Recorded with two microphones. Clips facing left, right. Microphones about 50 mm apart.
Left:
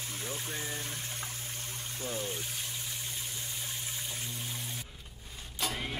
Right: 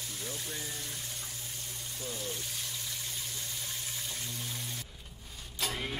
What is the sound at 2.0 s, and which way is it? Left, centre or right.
Speech, left.